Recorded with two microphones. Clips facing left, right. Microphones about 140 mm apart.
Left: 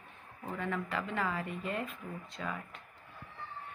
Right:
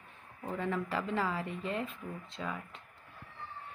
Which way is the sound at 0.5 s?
25° right (ahead or behind).